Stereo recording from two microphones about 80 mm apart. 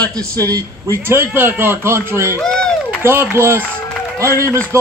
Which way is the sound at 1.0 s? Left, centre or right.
Right.